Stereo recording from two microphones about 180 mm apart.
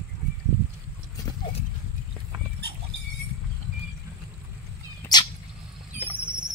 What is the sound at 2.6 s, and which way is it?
Goat, 65° right (ahead or behind).